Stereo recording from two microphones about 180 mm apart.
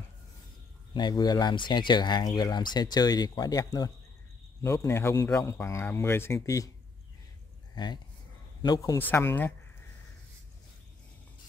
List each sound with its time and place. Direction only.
0.9 s speech: 25° left (ahead or behind)
7.7 s speech: 25° left (ahead or behind)